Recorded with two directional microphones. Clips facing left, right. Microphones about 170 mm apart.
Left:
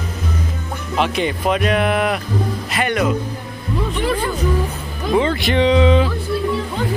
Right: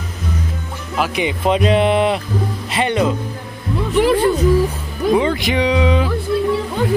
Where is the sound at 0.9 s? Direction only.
5° right (ahead or behind).